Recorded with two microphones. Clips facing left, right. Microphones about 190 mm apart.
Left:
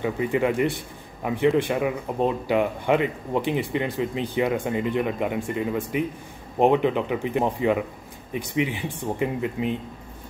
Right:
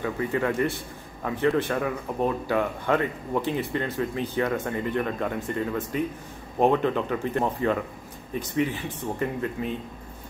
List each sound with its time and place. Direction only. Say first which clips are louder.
0.0 s speech: left 3 dB; 15° left (ahead or behind)